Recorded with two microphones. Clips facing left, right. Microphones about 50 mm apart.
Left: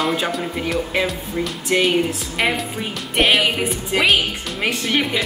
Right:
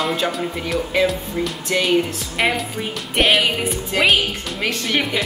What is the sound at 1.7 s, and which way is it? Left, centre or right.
Speech, centre.